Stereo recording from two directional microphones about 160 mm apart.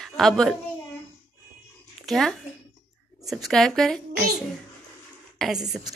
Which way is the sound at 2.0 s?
Centre (ahead or behind).